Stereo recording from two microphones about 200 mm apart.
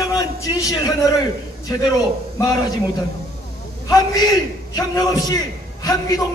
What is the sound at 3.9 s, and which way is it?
A man's voice, 20° left (ahead or behind).